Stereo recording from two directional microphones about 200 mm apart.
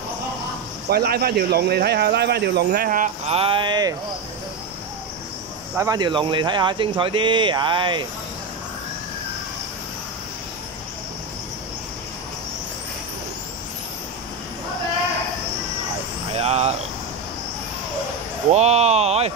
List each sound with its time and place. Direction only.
0.8 s speech: 50° right (ahead or behind)
3.3 s speech: 30° right (ahead or behind)
5.8 s speech: 20° right (ahead or behind)
16.3 s speech: 30° right (ahead or behind)
18.5 s speech: 35° right (ahead or behind)